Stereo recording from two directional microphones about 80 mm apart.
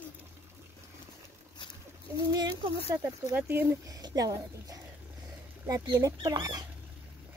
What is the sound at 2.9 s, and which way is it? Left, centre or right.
Speech, right.